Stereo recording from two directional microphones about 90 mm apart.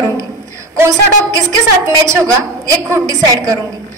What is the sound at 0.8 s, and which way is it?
A woman's voice, 35° right (ahead or behind).